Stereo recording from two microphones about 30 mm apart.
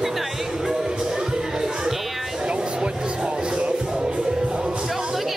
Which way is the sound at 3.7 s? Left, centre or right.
Right.